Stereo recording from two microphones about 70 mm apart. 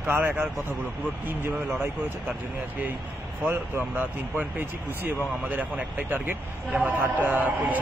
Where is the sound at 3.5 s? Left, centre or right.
Right.